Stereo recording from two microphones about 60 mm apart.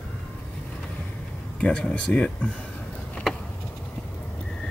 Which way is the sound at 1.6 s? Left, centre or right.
Centre.